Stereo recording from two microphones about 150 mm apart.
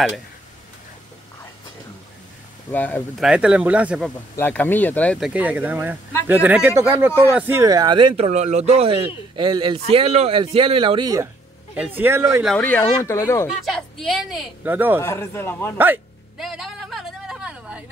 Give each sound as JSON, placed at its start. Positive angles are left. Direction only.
{"t": 2.7, "sound": "speech", "side_deg": 10}
{"t": 3.2, "sound": "speech", "side_deg": -5}
{"t": 4.4, "sound": "speech", "side_deg": 10}
{"t": 5.2, "sound": "speech", "side_deg": -10}
{"t": 7.6, "sound": "speech", "side_deg": -25}
{"t": 8.3, "sound": "speech", "side_deg": -50}
{"t": 11.7, "sound": "speech", "side_deg": -10}
{"t": 12.4, "sound": "speech", "side_deg": 10}
{"t": 13.7, "sound": "a woman's voice", "side_deg": 0}
{"t": 15.0, "sound": "speech", "side_deg": 15}
{"t": 16.3, "sound": "a sound", "side_deg": 0}